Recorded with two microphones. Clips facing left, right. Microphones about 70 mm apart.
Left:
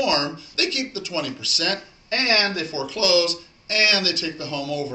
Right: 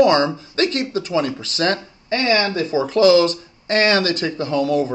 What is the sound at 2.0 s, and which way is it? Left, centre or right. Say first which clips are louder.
Speech: right 4 dB; right.